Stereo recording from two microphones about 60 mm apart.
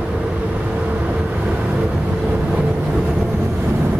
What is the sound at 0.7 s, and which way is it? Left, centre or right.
Vehicle, right.